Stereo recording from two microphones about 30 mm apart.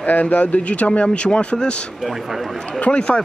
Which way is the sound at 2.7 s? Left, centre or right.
Left.